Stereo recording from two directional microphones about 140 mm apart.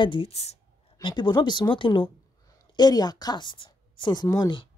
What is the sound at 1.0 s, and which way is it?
Speech, 30° left (ahead or behind).